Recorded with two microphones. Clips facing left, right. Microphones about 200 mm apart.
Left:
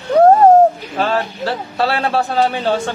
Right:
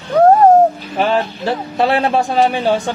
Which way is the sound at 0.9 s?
15° right (ahead or behind).